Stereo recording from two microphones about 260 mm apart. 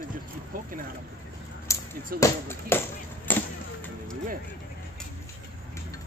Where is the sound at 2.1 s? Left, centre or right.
Centre.